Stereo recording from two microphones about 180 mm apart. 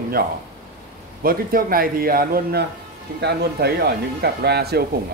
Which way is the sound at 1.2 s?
55° right (ahead or behind).